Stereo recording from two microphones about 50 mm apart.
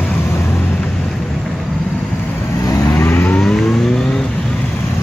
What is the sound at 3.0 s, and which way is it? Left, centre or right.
Vehicle, left.